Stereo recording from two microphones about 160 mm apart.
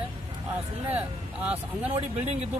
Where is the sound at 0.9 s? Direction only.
10° right (ahead or behind).